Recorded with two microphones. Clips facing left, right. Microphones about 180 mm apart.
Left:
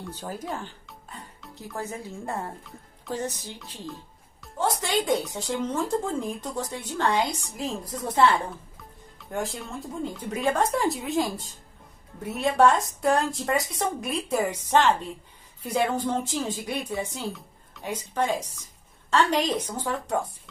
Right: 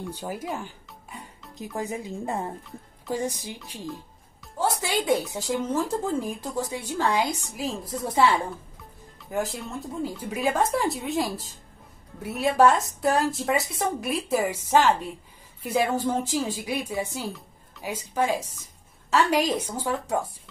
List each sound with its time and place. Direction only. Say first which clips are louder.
0.0 s a woman's voice: right 2 dB; 10° right (ahead or behind)